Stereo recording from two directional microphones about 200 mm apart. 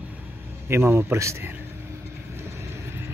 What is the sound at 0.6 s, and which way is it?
Speech, 10° right (ahead or behind).